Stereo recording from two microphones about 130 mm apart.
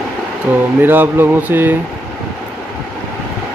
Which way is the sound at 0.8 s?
15° right (ahead or behind).